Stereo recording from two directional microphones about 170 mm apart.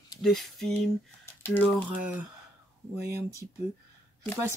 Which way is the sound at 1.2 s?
10° left (ahead or behind).